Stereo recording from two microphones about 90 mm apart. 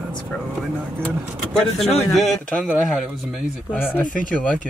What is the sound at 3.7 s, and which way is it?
Speech, 20° left (ahead or behind).